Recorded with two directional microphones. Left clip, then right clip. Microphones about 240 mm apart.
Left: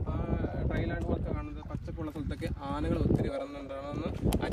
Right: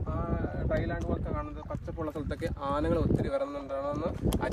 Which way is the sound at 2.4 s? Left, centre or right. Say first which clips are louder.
Right 5 dB; centre.